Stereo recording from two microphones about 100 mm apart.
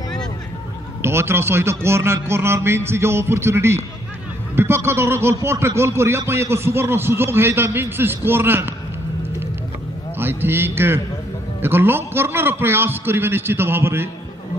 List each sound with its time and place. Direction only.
1.0 s speech: 25° right (ahead or behind)
10.1 s speech: 20° right (ahead or behind)